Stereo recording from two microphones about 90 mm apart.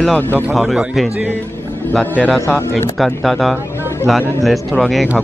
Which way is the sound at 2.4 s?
30° left (ahead or behind).